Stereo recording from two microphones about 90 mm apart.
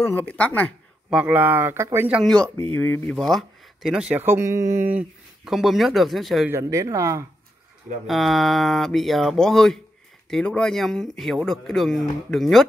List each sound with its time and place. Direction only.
0.0 s speech: 20° left (ahead or behind)
1.1 s speech: 20° right (ahead or behind)
2.2 s speech: 10° left (ahead or behind)
3.2 s speech: centre (ahead or behind)
4.2 s speech: 30° right (ahead or behind)
5.4 s speech: 5° right (ahead or behind)
6.5 s speech: 35° right (ahead or behind)
8.1 s speech: centre (ahead or behind)